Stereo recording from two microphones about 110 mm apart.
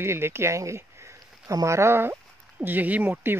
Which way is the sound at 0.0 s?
25° right (ahead or behind).